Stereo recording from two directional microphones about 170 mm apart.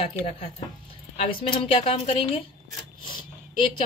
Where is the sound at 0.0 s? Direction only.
35° left (ahead or behind).